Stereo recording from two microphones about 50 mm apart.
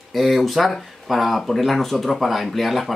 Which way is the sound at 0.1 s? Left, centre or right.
Centre.